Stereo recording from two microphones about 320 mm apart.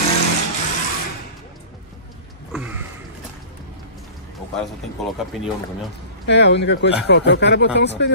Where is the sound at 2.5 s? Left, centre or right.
Centre.